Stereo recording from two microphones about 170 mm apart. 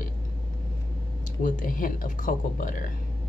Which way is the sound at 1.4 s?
50° left (ahead or behind).